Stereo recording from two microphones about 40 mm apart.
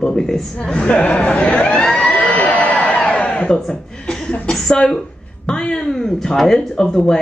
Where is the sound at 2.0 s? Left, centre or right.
Left.